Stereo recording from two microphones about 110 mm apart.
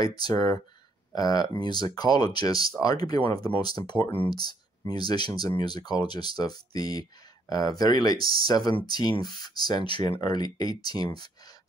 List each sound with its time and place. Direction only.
0.0 s speech: 35° left (ahead or behind)